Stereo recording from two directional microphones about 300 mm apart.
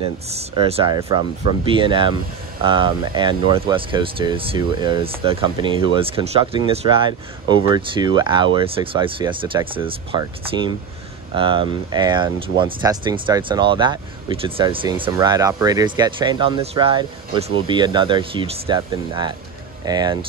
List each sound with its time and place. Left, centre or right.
0.0 s speech: centre